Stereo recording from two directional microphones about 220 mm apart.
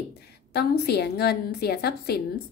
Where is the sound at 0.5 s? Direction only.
45° left (ahead or behind).